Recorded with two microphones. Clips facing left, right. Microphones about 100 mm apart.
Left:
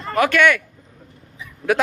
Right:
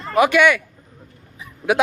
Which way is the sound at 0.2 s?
10° right (ahead or behind).